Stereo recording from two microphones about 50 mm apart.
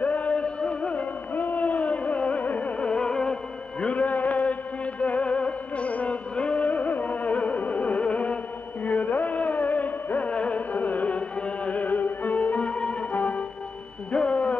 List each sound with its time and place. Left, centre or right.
0.0 s music: left
1.3 s music: left; by 3.3 s centre
3.8 s music: left
14.1 s a sound: left